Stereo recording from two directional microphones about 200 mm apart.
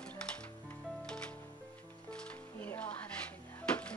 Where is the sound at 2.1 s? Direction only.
5° left (ahead or behind).